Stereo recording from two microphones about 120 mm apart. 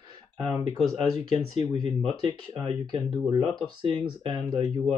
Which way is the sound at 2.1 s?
40° right (ahead or behind).